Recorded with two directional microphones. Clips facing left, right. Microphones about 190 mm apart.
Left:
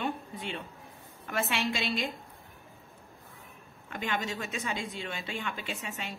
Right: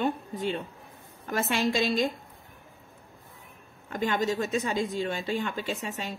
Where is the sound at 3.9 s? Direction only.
40° right (ahead or behind).